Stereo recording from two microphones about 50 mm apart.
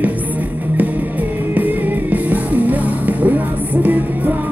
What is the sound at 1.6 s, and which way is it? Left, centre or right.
Music, right.